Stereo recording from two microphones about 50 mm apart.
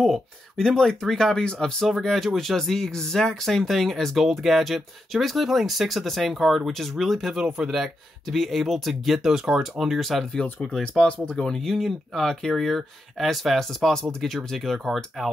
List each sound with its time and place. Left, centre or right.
0.6 s speech: centre
1.9 s speech: centre
7.4 s speech: centre
10.3 s speech: centre